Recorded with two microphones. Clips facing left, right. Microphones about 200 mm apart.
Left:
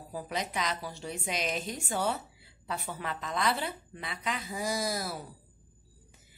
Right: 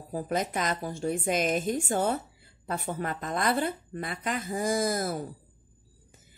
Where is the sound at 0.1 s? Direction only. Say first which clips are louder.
Right 6 dB; 50° right (ahead or behind).